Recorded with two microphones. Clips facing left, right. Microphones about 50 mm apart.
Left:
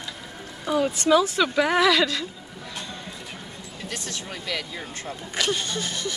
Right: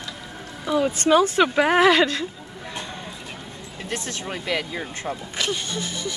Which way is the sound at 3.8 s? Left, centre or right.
Right.